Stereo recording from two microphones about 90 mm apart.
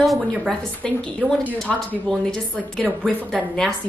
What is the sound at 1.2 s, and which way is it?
Speech, 15° left (ahead or behind).